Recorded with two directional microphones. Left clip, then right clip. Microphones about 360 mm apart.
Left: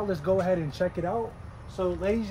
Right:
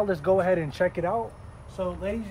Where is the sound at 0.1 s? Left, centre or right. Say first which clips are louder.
Even; right.